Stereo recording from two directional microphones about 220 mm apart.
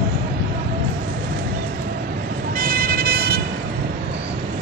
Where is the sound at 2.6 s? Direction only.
40° right (ahead or behind).